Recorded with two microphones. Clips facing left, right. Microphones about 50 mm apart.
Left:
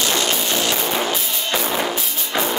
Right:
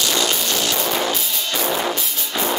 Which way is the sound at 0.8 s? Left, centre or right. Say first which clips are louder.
Even; centre.